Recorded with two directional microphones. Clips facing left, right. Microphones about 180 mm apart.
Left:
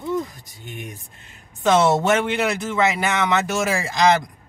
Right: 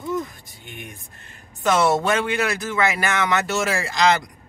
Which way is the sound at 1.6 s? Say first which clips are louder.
Left 2 dB; 20° left (ahead or behind).